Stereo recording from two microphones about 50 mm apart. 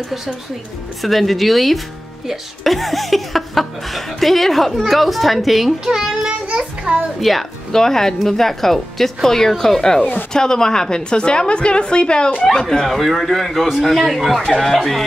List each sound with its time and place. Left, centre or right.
1.0 s speech: centre
6.2 s a child's voice: right
7.2 s a woman's voice: centre